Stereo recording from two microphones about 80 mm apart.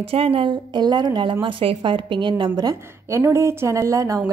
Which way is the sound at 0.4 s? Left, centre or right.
Right.